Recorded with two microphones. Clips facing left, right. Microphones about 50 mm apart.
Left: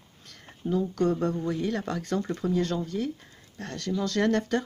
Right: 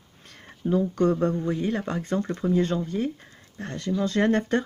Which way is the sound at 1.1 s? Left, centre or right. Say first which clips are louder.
Right 3 dB; right.